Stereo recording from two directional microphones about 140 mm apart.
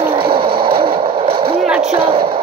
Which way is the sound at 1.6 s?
5° right (ahead or behind).